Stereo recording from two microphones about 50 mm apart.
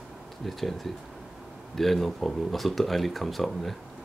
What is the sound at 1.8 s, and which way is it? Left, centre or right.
Speech, centre.